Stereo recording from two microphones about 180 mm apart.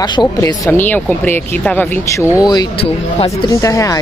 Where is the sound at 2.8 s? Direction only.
30° left (ahead or behind).